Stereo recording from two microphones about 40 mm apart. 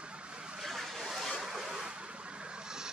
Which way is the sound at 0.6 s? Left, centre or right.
Centre.